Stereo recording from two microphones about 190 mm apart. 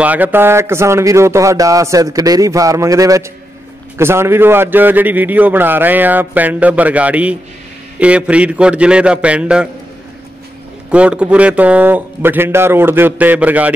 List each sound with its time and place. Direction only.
0.0 s a man's voice: 10° right (ahead or behind)
10.9 s a man's voice: 5° right (ahead or behind)